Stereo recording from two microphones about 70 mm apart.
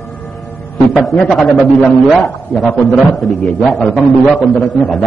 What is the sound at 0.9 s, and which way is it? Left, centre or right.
A man's voice, centre.